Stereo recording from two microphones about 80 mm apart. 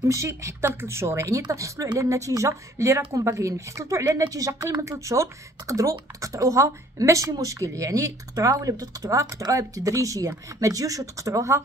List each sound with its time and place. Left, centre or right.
0.0 s speech: right